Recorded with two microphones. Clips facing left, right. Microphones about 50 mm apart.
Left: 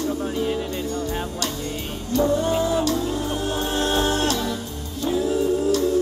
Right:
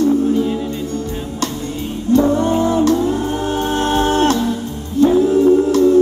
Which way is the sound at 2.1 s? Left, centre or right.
Right.